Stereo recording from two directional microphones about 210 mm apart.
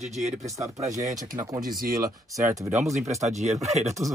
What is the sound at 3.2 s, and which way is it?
Speech, 35° right (ahead or behind).